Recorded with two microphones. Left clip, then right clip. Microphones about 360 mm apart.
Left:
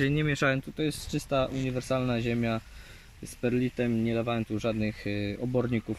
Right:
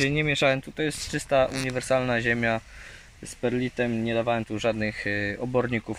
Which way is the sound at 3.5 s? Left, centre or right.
Right.